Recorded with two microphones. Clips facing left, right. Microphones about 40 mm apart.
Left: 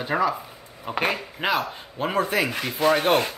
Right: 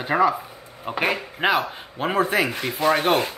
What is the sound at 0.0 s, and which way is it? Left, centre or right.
Speech, centre.